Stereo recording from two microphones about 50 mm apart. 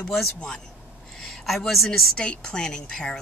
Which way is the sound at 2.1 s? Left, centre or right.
Centre.